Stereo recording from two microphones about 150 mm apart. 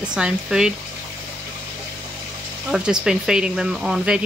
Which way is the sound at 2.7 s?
5° right (ahead or behind).